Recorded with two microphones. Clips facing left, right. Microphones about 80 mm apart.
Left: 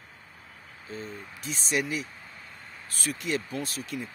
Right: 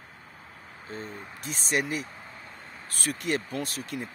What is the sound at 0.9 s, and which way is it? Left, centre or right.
Speech, right.